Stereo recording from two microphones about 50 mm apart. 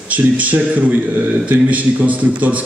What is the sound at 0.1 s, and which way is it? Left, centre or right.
A man's voice, right.